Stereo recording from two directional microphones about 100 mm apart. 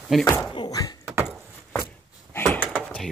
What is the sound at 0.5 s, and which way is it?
Thunk, 40° left (ahead or behind).